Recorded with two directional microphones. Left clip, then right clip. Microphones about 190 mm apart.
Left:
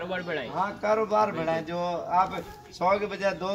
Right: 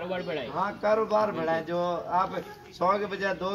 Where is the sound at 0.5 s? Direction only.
25° left (ahead or behind).